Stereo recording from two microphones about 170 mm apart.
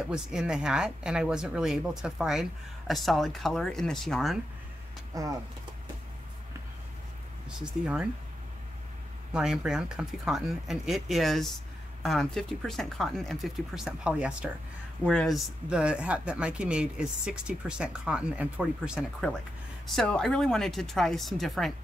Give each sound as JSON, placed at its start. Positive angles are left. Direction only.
{"t": 0.0, "sound": "speech", "side_deg": -5}
{"t": 5.1, "sound": "speech", "side_deg": -20}
{"t": 7.4, "sound": "speech", "side_deg": -5}
{"t": 9.3, "sound": "speech", "side_deg": -5}